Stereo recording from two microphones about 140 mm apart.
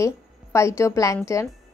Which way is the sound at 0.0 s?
20° left (ahead or behind).